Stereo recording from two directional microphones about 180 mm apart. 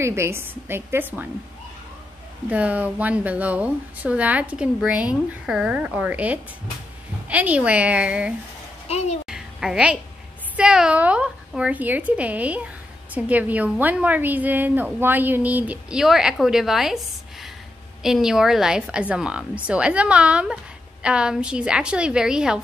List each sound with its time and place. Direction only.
0.0 s a woman's voice: 15° right (ahead or behind)
2.5 s a woman's voice: 10° right (ahead or behind)
8.8 s speech: 35° left (ahead or behind)
9.2 s a sound: 5° right (ahead or behind)
10.5 s a woman's voice: 5° right (ahead or behind)